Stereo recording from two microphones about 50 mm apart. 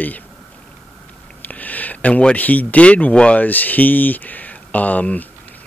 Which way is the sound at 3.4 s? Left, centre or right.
Left.